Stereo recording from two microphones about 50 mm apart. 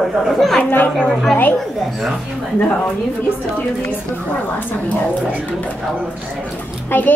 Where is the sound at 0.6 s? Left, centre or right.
Left.